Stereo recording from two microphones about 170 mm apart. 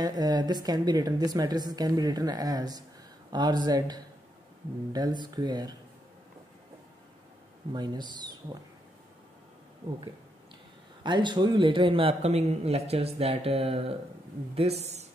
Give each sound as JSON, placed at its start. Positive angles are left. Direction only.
{"t": 0.0, "sound": "a woman's voice", "side_deg": -25}
{"t": 7.7, "sound": "a woman's voice", "side_deg": -25}
{"t": 11.1, "sound": "a man's voice", "side_deg": -25}